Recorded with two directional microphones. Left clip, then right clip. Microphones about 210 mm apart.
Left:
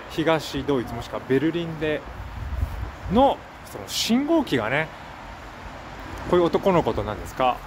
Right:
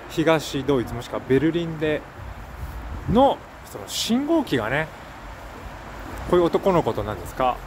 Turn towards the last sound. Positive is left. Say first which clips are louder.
# even
turn(degrees=0)  # may be behind; listen again after turning